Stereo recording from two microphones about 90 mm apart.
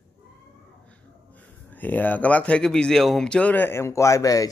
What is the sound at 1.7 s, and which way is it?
Speech, 20° left (ahead or behind).